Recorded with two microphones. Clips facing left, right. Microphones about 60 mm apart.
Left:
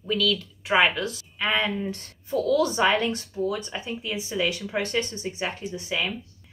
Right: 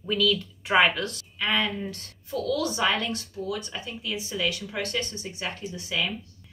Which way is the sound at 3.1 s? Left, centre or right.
Left.